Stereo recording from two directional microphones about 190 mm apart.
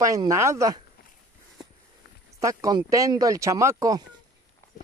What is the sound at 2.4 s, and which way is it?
Speech, 15° right (ahead or behind).